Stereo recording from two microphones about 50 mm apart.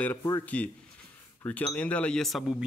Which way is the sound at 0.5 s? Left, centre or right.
Left.